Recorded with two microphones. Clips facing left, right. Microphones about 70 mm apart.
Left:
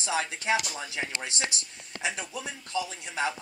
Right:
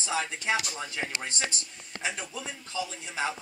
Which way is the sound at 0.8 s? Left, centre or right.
Left.